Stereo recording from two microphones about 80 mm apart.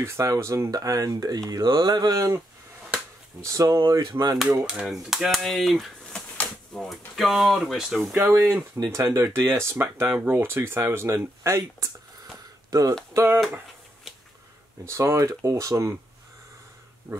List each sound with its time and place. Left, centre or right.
0.0 s speech: right
1.5 s a sound: right
3.3 s speech: right
4.0 s speech: right
4.5 s speech: centre
6.3 s a sound: centre
7.2 s speech: centre
8.2 s speech: right
13.1 s speech: right
14.9 s speech: right
17.1 s pig: right